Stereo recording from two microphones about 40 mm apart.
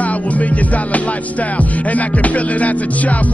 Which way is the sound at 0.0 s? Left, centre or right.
Left.